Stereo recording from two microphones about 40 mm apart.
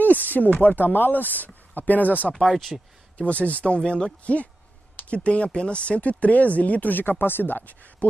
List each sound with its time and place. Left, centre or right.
0.0 s a sound: left
0.6 s speech: left
2.5 s speech: centre
3.2 s speech: left
4.2 s speech: left